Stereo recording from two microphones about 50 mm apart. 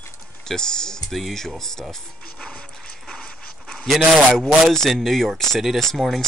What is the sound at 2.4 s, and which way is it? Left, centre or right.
Dog, left.